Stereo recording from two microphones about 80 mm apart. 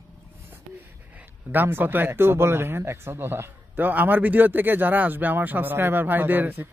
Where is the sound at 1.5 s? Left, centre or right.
Right.